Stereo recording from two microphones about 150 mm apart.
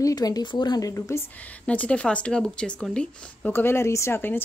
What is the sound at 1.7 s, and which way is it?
Speech, 10° left (ahead or behind).